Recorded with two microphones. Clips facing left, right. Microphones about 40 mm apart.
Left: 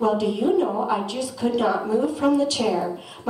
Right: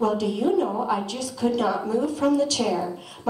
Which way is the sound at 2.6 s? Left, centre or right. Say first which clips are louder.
Left 2 dB; centre.